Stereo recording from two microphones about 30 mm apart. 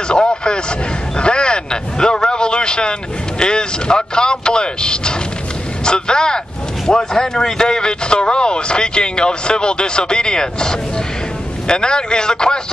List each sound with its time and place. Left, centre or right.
0.1 s vehicle: left
1.1 s speech: left